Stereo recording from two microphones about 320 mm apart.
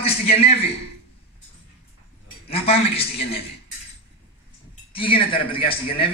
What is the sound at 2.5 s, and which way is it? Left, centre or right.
Speech, centre.